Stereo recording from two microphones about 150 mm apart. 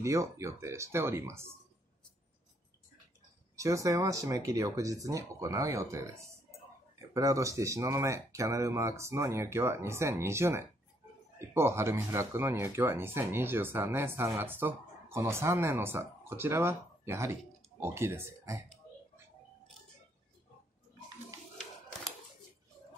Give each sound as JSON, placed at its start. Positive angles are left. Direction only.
{"t": 0.0, "sound": "speech", "side_deg": -20}
{"t": 3.5, "sound": "speech", "side_deg": -20}
{"t": 21.5, "sound": "a sound", "side_deg": 0}